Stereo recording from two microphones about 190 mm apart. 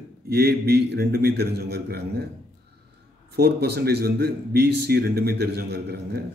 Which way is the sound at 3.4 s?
60° right (ahead or behind).